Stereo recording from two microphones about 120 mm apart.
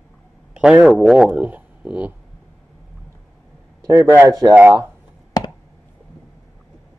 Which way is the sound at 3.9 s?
25° right (ahead or behind).